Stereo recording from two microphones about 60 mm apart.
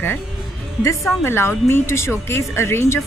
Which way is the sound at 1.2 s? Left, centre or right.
Left.